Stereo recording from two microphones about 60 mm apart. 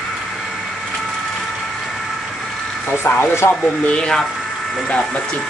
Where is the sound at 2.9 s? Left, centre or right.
Left.